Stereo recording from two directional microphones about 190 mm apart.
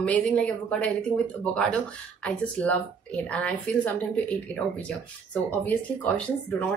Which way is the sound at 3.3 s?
5° left (ahead or behind).